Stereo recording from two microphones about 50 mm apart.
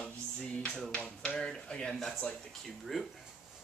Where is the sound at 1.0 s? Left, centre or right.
Left.